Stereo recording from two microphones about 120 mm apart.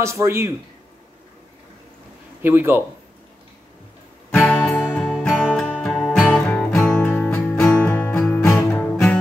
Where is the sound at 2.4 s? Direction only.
20° right (ahead or behind).